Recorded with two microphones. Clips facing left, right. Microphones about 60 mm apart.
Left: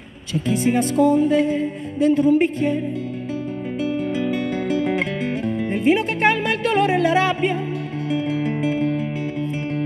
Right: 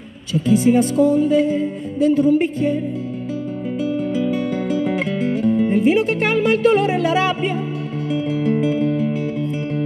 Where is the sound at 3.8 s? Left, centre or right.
Left.